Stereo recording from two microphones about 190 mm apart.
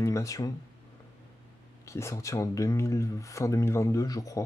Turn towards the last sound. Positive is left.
turn(degrees=20)  # may be behind; listen again after turning